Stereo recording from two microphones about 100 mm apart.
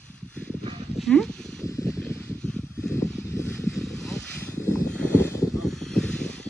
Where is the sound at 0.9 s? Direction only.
Centre (ahead or behind).